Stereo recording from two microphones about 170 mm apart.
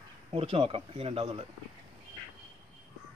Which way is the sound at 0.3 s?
35° right (ahead or behind).